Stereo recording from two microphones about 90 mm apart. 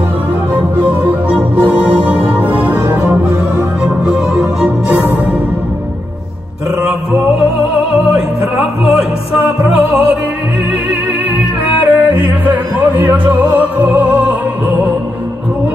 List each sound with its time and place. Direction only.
0.5 s music: 20° right (ahead or behind)
8.5 s music: 5° right (ahead or behind)
9.8 s music: 15° right (ahead or behind)
11.6 s yodeling: 20° right (ahead or behind)